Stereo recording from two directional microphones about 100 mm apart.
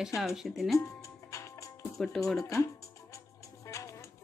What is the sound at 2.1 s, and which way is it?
Speech, centre (ahead or behind).